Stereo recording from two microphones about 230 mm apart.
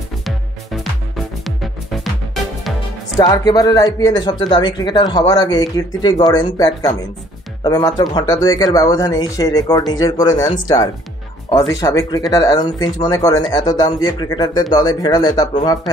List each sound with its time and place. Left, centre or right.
1.1 s music: centre
3.2 s speech: centre